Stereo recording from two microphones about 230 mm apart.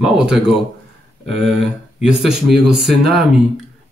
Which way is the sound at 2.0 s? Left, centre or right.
Centre.